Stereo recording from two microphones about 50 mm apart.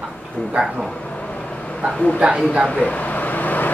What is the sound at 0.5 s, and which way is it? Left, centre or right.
Speech, right.